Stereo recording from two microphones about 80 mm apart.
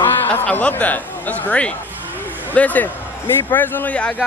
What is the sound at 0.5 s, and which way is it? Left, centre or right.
Speech, centre.